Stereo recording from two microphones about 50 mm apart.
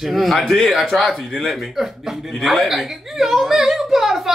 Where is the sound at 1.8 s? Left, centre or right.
Centre.